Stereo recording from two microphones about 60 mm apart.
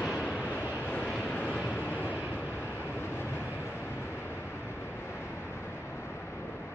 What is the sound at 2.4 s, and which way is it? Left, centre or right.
Vehicle, left.